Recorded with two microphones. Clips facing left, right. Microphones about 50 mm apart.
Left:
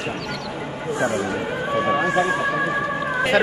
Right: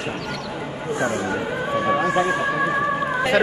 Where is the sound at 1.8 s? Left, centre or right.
Centre.